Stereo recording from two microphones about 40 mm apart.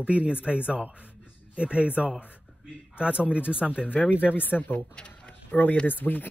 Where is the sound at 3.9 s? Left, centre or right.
Left.